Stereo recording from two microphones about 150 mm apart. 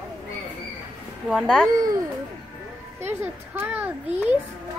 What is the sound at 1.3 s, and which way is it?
Speech, centre (ahead or behind).